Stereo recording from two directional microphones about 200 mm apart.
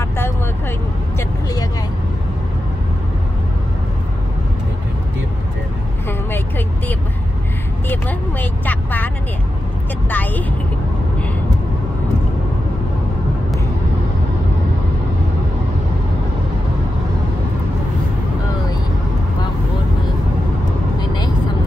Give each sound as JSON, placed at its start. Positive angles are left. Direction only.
{"t": 7.9, "sound": "vehicle", "side_deg": 10}
{"t": 21.0, "sound": "vehicle", "side_deg": 20}